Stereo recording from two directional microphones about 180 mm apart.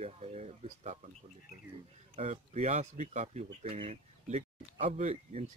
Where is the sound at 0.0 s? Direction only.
35° right (ahead or behind).